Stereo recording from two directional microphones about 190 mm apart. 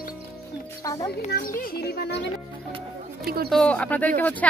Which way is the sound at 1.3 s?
50° left (ahead or behind).